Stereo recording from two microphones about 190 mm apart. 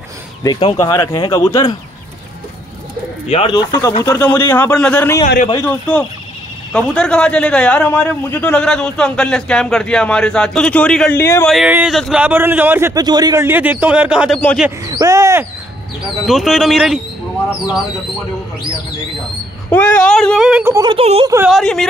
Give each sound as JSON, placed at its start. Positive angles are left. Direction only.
{"t": 0.6, "sound": "speech", "side_deg": 25}
{"t": 3.3, "sound": "a man's voice", "side_deg": 30}
{"t": 11.5, "sound": "a man's voice", "side_deg": -5}
{"t": 14.9, "sound": "a man's voice", "side_deg": -20}
{"t": 16.3, "sound": "a man's voice", "side_deg": 0}
{"t": 19.7, "sound": "a man's voice", "side_deg": 10}
{"t": 20.6, "sound": "a man's voice", "side_deg": -15}
{"t": 20.9, "sound": "speech", "side_deg": -30}
{"t": 21.5, "sound": "a man's voice", "side_deg": 0}